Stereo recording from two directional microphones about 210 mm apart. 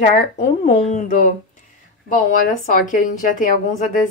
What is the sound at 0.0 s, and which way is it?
Speech, 35° left (ahead or behind).